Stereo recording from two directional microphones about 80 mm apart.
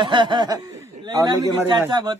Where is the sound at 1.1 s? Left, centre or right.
Right.